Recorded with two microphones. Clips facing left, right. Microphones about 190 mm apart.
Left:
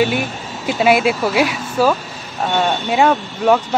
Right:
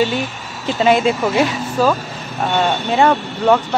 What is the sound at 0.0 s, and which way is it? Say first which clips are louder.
Speech: left 1 dB; 15° left (ahead or behind).